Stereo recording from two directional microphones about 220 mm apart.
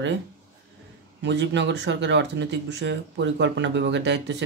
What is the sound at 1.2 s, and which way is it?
Speech, 55° right (ahead or behind).